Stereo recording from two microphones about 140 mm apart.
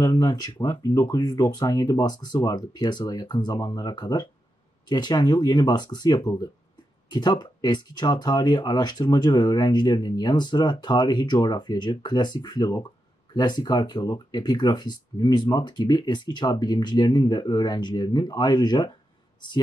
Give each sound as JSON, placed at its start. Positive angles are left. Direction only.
{"t": 0.0, "sound": "speech", "side_deg": 25}